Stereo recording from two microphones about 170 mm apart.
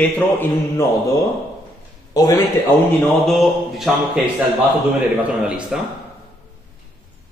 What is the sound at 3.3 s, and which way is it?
Speech, centre (ahead or behind).